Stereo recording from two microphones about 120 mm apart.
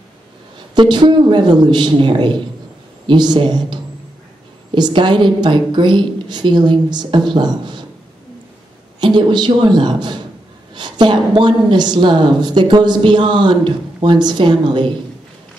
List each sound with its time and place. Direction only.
0.7 s a woman's voice: 40° right (ahead or behind)
9.0 s a woman's voice: 40° right (ahead or behind)